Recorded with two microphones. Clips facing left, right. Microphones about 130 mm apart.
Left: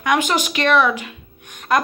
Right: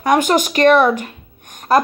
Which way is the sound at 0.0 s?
45° right (ahead or behind).